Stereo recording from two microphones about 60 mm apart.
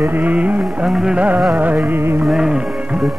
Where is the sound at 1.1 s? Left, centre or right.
Right.